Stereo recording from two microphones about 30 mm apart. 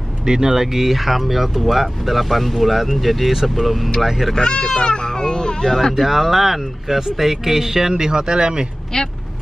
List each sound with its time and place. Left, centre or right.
0.2 s speech: right
4.4 s speech: left
5.9 s speech: centre; by 8.6 s right
8.9 s speech: left